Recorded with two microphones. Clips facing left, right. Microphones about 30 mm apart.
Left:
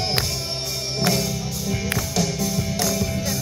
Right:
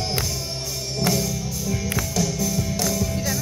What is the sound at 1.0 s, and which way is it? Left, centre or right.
Music, left.